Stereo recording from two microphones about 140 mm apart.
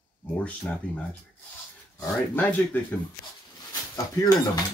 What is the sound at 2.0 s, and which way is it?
Speech, 10° left (ahead or behind).